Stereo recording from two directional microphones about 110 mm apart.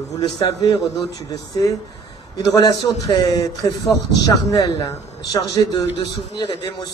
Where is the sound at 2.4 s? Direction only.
35° left (ahead or behind).